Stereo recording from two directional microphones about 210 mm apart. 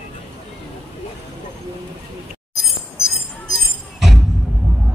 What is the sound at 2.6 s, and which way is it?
Chink, centre (ahead or behind).